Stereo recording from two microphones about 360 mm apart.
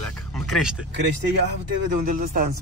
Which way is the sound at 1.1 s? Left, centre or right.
Right.